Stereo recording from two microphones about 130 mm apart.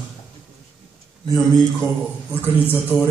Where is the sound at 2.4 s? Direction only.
15° left (ahead or behind).